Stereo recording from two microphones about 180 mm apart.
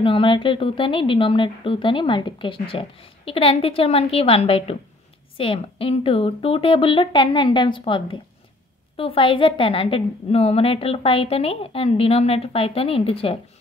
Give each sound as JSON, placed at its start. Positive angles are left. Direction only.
{"t": 0.0, "sound": "a woman's voice", "side_deg": 30}